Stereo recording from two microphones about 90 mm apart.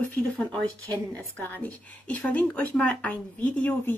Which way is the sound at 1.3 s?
20° left (ahead or behind).